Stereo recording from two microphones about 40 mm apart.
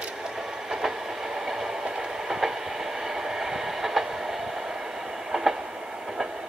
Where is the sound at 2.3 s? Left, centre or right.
Centre.